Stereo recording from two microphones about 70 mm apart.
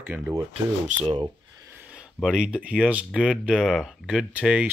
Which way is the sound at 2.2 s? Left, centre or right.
Centre.